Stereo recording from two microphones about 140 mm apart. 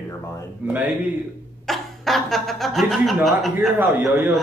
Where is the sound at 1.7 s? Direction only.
Centre (ahead or behind).